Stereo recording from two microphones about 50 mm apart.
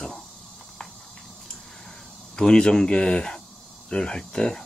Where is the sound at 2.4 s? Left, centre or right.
Centre.